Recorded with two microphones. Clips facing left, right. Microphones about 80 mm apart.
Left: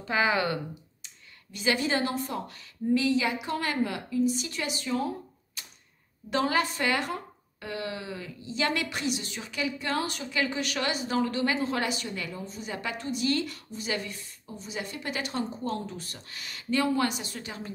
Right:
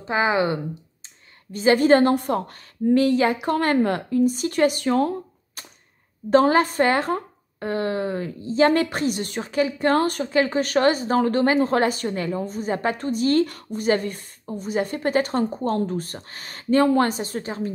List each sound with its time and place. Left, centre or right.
0.0 s speech: right
1.5 s speech: right
6.3 s speech: right